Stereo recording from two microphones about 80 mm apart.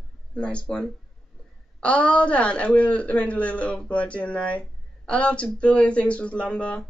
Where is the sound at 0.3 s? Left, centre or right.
Centre.